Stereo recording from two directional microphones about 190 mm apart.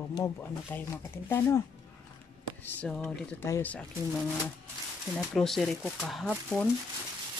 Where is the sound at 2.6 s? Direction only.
5° left (ahead or behind).